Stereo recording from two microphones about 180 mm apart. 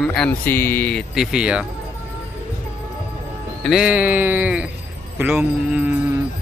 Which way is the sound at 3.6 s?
5° right (ahead or behind).